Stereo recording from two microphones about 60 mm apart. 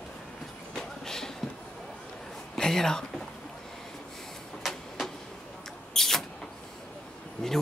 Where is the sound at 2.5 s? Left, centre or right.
Centre.